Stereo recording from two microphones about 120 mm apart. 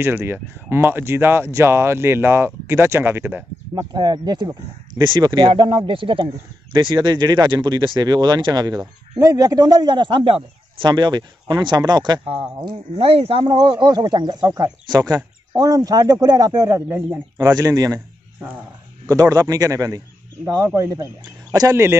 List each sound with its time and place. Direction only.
0.0 s speech: 20° right (ahead or behind)
3.7 s speech: 35° right (ahead or behind)
12.9 s speech: 55° right (ahead or behind); by 18.0 s 30° right (ahead or behind)
19.0 s speech: 30° right (ahead or behind)